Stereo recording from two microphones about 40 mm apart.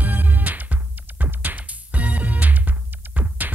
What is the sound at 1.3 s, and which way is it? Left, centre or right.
Music, right.